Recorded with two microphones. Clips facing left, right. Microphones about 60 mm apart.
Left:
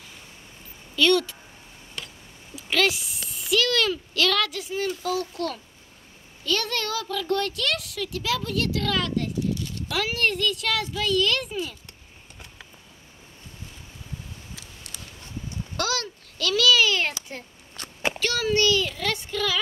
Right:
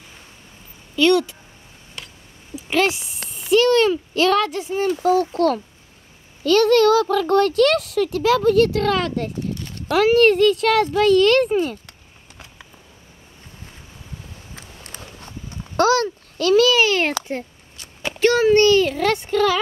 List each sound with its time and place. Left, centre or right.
0.9 s speech: centre
2.5 s speech: right
14.5 s a sound: right
15.7 s a child's voice: right
17.8 s a sound: left
18.2 s speech: right